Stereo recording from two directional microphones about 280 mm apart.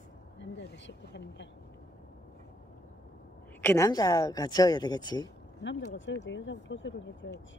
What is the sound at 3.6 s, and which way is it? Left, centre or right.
A man's voice, centre.